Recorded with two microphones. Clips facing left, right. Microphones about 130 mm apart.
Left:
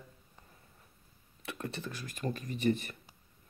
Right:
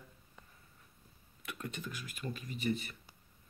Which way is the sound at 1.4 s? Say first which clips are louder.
Left 3 dB; 30° left (ahead or behind).